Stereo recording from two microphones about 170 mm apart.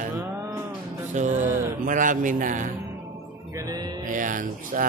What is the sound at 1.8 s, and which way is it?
Speech, 50° right (ahead or behind).